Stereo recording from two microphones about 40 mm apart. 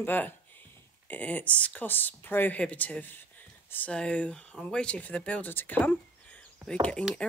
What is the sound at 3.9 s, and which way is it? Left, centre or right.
Speech, left.